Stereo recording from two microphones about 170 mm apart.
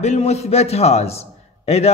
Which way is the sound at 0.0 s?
40° left (ahead or behind).